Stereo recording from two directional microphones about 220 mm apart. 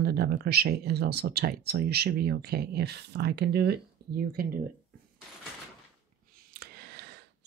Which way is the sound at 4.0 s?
45° right (ahead or behind).